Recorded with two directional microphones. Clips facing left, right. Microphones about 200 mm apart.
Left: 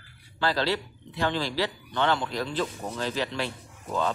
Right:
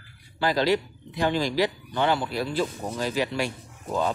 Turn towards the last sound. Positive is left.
turn(degrees=-15)  # may be behind; listen again after turning